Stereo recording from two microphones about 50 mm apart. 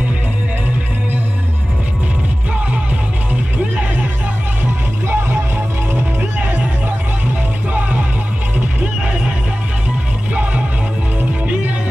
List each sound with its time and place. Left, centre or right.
5.0 s vehicle: right
11.1 s music: right